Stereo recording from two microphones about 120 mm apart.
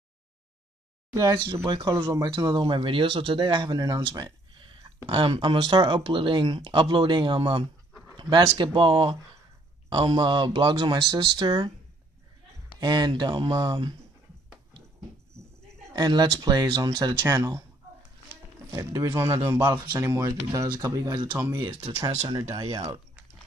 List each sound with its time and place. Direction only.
1.7 s speech: 40° right (ahead or behind)
2.5 s speech: 45° right (ahead or behind)
4.0 s a sound: 40° right (ahead or behind)
5.0 s speech: 45° right (ahead or behind)
12.8 s speech: 35° right (ahead or behind)
15.9 s speech: 35° right (ahead or behind)
18.7 s speech: 30° right (ahead or behind)